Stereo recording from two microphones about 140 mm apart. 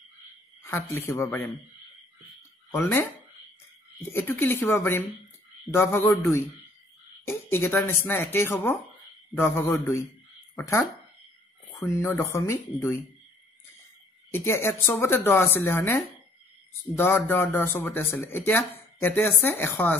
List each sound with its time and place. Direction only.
0.6 s speech: 15° left (ahead or behind)
2.7 s speech: 15° left (ahead or behind)
4.1 s speech: 15° left (ahead or behind)
14.3 s speech: 20° left (ahead or behind)